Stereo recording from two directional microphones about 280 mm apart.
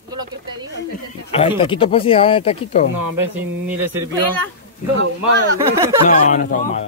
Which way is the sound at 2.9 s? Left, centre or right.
Right.